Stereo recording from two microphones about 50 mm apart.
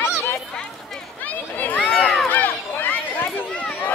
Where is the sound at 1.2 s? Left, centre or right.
Left.